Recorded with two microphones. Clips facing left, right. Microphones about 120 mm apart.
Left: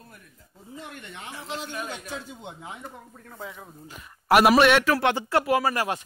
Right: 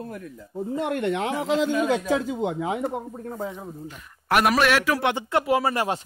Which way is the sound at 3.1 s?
35° right (ahead or behind).